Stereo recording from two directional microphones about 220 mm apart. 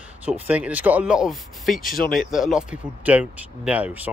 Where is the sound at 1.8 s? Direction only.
40° left (ahead or behind).